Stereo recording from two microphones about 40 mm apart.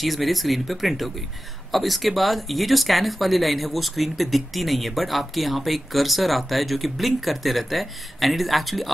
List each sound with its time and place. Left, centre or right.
0.0 s speech: centre